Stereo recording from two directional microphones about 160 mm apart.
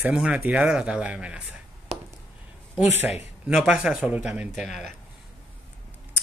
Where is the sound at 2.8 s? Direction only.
15° right (ahead or behind).